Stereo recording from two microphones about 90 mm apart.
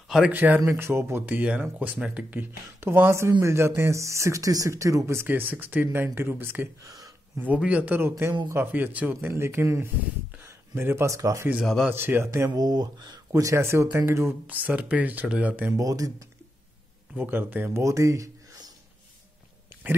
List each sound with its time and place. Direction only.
0.3 s speech: 20° right (ahead or behind)
0.6 s speech: 30° right (ahead or behind)
6.8 s speech: 40° right (ahead or behind)
7.3 s a man's voice: 15° right (ahead or behind)
12.5 s speech: 50° right (ahead or behind); by 15.7 s 15° right (ahead or behind)
15.7 s speech: 40° right (ahead or behind)
17.1 s speech: 20° right (ahead or behind)
17.8 s a sound: 35° right (ahead or behind)